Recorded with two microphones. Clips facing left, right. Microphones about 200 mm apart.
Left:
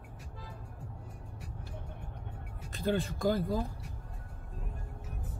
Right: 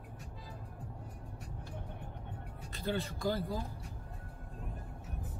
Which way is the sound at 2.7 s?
50° left (ahead or behind).